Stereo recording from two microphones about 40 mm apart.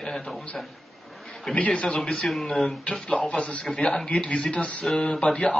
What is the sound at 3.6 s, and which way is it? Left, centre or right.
Speech, centre.